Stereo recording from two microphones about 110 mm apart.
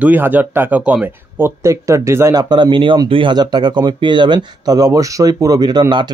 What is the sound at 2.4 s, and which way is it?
Speech, 45° right (ahead or behind).